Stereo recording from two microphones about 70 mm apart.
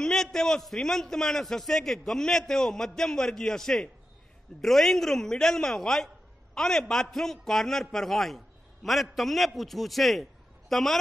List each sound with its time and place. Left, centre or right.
0.0 s a man's voice: centre